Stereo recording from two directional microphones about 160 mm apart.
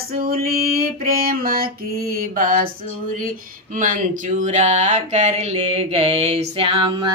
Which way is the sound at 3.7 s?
55° right (ahead or behind).